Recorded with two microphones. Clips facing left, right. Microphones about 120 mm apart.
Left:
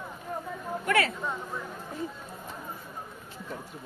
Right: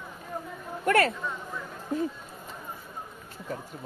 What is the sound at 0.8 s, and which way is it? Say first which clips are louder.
Speech: right 4 dB; 45° right (ahead or behind).